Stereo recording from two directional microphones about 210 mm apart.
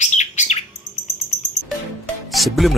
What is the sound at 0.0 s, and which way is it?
Bird, 35° left (ahead or behind).